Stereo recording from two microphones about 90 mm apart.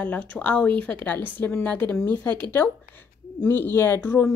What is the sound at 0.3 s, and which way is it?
A woman's voice, 15° left (ahead or behind).